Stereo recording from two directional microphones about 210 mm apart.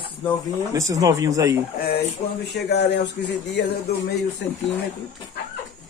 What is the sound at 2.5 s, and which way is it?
Speech, 55° left (ahead or behind).